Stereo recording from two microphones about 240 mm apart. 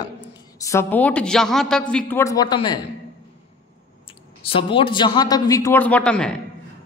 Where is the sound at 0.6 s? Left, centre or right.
Centre.